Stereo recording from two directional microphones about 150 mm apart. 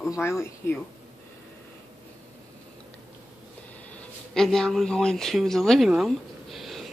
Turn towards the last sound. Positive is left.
turn(degrees=0)  # may be behind; listen again after turning